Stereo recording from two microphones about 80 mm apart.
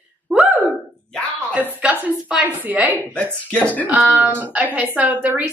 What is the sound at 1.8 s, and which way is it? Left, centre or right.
Speech, centre.